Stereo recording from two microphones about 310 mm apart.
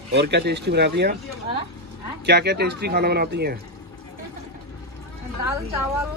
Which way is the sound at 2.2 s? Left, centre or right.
Right.